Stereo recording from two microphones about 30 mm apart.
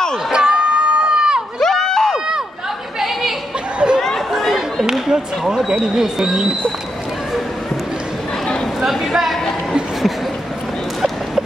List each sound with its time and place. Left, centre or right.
0.3 s crowd: right
1.6 s a sound: centre
2.1 s run: right
3.0 s chatter: centre
3.8 s chatter: right
4.3 s chatter: centre
5.0 s speech: right
9.1 s a sound: centre